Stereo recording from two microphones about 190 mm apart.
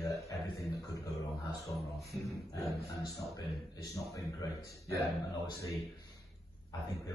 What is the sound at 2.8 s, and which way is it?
A man's voice, 15° left (ahead or behind).